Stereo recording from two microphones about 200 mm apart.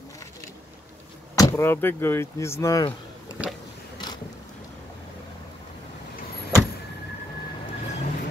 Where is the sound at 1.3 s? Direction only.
15° left (ahead or behind).